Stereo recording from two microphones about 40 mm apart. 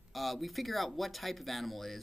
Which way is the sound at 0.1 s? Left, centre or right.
Centre.